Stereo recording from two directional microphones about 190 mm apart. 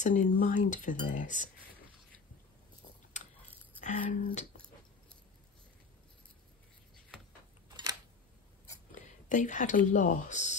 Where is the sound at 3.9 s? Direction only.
40° left (ahead or behind).